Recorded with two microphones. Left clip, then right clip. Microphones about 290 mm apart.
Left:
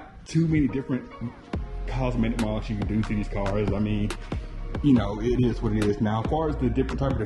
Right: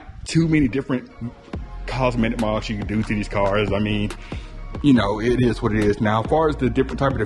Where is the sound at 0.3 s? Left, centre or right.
Centre.